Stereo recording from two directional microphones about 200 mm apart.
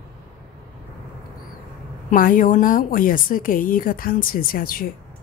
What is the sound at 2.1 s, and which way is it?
A woman's voice, 45° left (ahead or behind).